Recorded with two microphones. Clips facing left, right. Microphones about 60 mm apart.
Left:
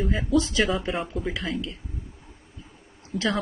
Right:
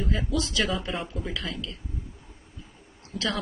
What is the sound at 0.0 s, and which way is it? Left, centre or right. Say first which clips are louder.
Speech: left 3 dB; centre.